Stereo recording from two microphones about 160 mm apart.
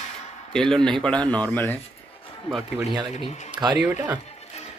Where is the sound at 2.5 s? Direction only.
35° left (ahead or behind).